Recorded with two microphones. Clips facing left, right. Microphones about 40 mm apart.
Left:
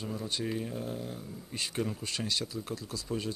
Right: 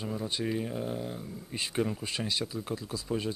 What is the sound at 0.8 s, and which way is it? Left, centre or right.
Speech, right.